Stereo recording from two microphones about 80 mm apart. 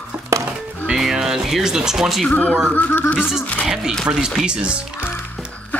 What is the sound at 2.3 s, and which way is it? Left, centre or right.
Speech, left.